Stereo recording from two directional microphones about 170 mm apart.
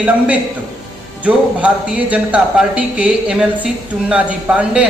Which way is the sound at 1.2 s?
10° right (ahead or behind).